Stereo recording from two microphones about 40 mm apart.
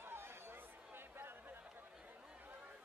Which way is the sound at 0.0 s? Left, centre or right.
Right.